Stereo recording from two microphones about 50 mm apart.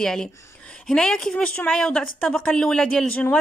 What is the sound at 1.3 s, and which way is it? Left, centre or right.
Speech, left.